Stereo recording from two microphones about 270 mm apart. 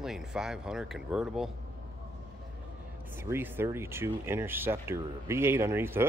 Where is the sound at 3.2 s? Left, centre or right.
Centre.